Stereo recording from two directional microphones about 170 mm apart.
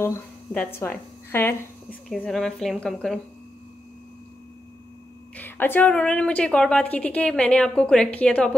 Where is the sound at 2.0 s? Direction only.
Centre (ahead or behind).